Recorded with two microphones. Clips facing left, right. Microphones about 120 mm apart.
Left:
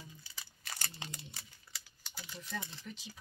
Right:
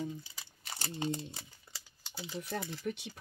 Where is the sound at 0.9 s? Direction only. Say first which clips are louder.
Right 13 dB; 30° right (ahead or behind).